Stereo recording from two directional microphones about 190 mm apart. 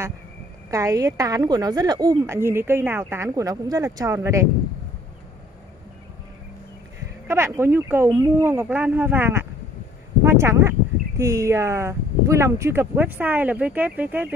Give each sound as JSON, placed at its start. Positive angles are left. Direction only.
{"t": 0.7, "sound": "speech", "side_deg": -15}
{"t": 7.2, "sound": "speech", "side_deg": -15}